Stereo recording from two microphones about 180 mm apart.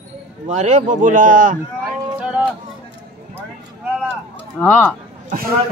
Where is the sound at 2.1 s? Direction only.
5° right (ahead or behind).